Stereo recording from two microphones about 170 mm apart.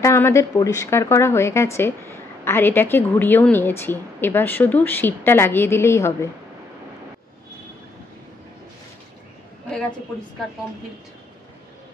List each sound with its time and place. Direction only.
0.0 s a woman's voice: 15° left (ahead or behind)